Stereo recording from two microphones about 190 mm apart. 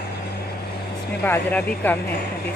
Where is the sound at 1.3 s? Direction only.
10° left (ahead or behind).